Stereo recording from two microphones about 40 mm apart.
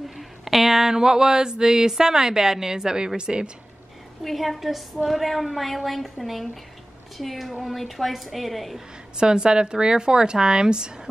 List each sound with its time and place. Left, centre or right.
0.2 s a sound: centre
3.2 s speech: right
4.2 s a woman's voice: centre
9.1 s speech: right